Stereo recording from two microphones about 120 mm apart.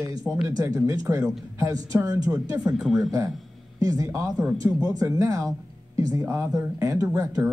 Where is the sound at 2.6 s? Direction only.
5° right (ahead or behind).